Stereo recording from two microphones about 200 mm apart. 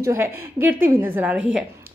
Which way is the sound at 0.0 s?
15° right (ahead or behind).